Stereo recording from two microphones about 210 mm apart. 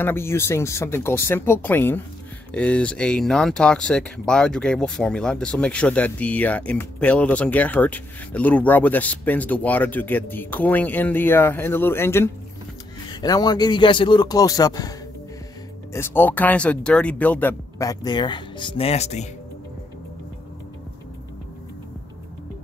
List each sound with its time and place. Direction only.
0.0 s speech: 10° left (ahead or behind); by 19.2 s 30° left (ahead or behind)